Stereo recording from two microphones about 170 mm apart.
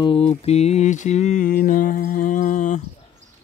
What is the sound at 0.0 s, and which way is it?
Mantra, 35° left (ahead or behind).